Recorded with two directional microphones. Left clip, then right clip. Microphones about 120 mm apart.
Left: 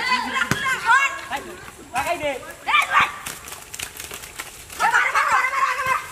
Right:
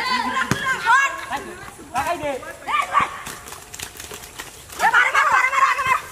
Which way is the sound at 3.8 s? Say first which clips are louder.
Left 2 dB; centre (ahead or behind).